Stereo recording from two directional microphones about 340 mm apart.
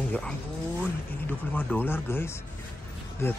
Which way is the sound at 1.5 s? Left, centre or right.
Centre.